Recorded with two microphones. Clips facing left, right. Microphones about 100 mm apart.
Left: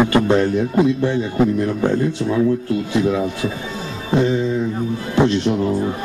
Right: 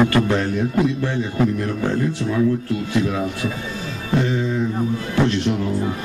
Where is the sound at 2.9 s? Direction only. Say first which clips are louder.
Left 3 dB; 25° left (ahead or behind).